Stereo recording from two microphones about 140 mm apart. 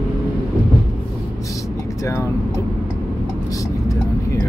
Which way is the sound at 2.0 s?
20° left (ahead or behind).